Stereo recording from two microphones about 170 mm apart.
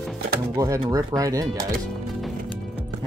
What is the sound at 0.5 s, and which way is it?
Speech, 20° right (ahead or behind).